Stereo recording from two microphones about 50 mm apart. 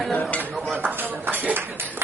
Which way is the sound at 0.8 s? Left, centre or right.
Right.